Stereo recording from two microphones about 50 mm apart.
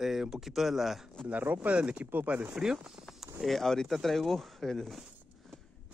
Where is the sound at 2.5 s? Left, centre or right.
Centre.